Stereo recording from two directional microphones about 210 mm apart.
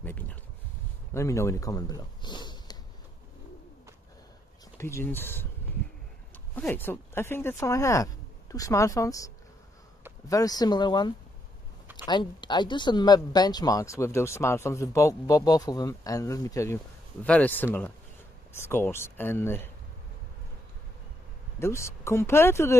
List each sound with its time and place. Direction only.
0.0 s a sound: 10° left (ahead or behind)
1.1 s speech: 15° left (ahead or behind)
4.7 s speech: 10° left (ahead or behind)
6.5 s speech: 10° left (ahead or behind)
21.5 s speech: 15° left (ahead or behind)